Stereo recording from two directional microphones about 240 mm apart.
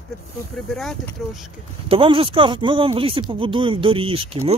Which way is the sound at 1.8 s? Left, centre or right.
Right.